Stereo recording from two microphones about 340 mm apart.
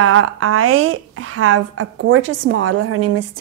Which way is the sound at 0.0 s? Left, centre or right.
Right.